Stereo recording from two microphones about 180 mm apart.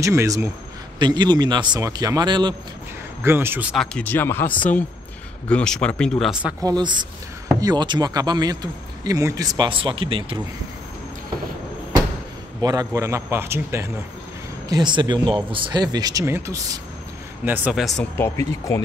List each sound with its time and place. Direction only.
0.0 s a man's voice: 15° right (ahead or behind)
3.2 s a man's voice: 15° right (ahead or behind)
3.7 s speech: 5° left (ahead or behind)
6.6 s speech: 25° right (ahead or behind)
12.6 s a man's voice: 20° right (ahead or behind)
14.7 s speech: 25° right (ahead or behind)
17.5 s speech: 5° right (ahead or behind)
18.1 s speech: 15° left (ahead or behind)